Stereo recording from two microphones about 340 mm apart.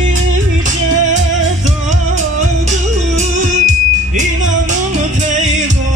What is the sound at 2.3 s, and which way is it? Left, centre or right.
Music, right.